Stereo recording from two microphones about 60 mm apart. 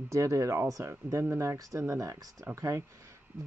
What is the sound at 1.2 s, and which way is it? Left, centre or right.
Speech, right.